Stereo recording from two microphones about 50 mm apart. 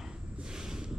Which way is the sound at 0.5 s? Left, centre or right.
Centre.